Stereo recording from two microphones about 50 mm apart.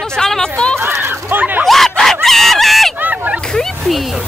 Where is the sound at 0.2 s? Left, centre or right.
Centre.